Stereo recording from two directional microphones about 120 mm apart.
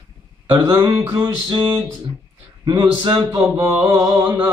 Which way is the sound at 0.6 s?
20° right (ahead or behind).